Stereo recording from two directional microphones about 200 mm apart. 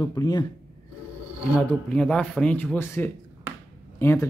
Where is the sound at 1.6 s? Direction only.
5° left (ahead or behind).